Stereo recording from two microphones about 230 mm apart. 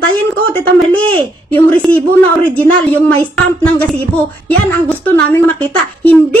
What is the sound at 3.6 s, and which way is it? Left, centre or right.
A woman's voice, centre.